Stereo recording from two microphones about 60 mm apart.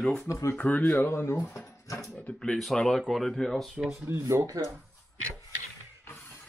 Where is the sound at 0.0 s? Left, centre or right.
Centre.